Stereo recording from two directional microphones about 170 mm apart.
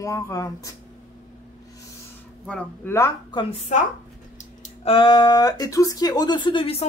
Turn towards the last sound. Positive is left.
turn(degrees=30)  # may be behind; listen again after turning